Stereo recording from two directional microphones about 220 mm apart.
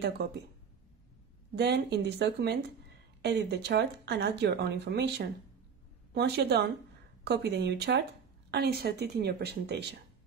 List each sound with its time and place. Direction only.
1.5 s speech: 50° right (ahead or behind)